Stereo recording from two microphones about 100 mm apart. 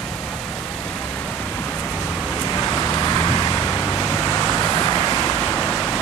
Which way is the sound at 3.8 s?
15° left (ahead or behind).